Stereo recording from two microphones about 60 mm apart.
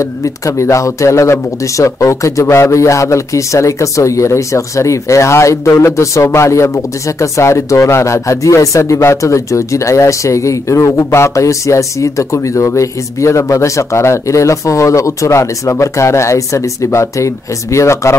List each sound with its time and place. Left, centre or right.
0.0 s speech: left